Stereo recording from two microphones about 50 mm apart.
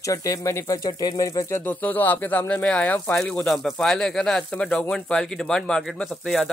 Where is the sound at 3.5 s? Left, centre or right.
Centre.